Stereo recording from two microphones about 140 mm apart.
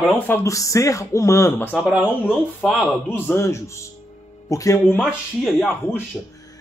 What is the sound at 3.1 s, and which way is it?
Speech, 15° left (ahead or behind).